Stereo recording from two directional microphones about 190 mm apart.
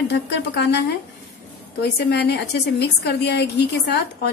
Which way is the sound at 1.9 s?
60° left (ahead or behind).